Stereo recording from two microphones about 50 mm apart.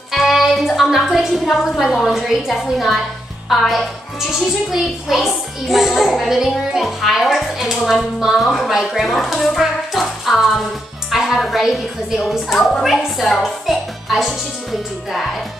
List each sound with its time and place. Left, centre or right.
0.1 s music: centre
2.1 s a child's voice: centre